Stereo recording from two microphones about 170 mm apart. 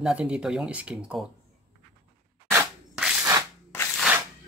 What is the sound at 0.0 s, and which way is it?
Speech, 5° right (ahead or behind).